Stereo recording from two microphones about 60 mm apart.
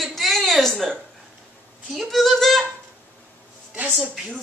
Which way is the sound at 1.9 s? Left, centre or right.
Centre.